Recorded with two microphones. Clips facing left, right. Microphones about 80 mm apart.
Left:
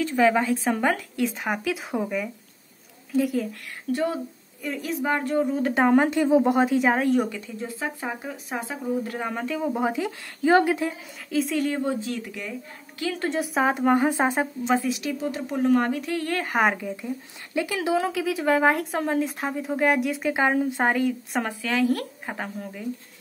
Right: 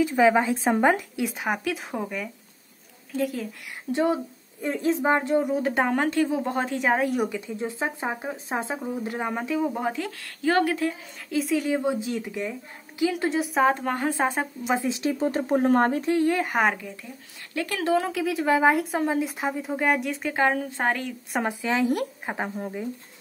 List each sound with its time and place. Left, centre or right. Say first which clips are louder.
0.0 s a woman's voice: right 1 dB; centre
1.4 s speech: even; centre
3.9 s speech: right 2 dB; right
5.5 s a woman's voice: left 3 dB; centre
6.7 s speech: left 3 dB; centre
7.2 s speech: right 2 dB; centre
9.6 s a woman's voice: left 3 dB; centre
10.0 s a woman's voice: left 3 dB; centre
11.2 s a woman's voice: even; centre
13.3 s a woman's voice: left 1 dB; centre
14.8 s a woman's voice: right 2 dB; right
16.3 s speech: right 1 dB; centre
16.8 s a woman's voice: left 8 dB; centre
21.4 s speech: right 1 dB; centre